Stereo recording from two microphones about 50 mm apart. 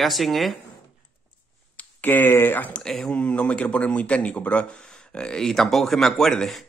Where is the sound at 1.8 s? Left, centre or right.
Left.